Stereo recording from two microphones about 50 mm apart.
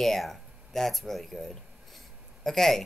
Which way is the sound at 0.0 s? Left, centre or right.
Centre.